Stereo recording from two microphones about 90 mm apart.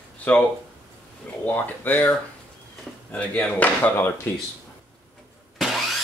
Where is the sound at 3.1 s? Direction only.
15° left (ahead or behind).